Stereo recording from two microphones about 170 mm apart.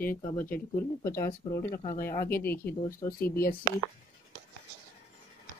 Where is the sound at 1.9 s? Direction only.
60° left (ahead or behind).